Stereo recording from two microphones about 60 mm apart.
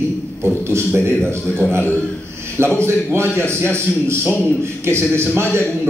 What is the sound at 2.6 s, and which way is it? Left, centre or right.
A man's voice, right.